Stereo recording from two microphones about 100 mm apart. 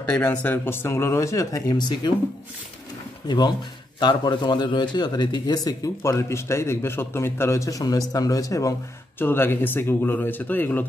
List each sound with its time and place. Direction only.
0.1 s speech: 15° left (ahead or behind); by 2.1 s 45° left (ahead or behind)
3.3 s a man's voice: 45° left (ahead or behind)
9.2 s speech: 20° left (ahead or behind)